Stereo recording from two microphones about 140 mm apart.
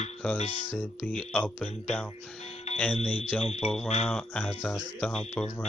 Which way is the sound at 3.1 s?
35° right (ahead or behind).